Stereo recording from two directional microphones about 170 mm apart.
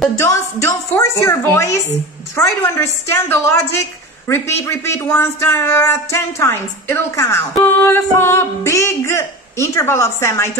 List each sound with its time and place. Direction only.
0.0 s speech: 15° left (ahead or behind)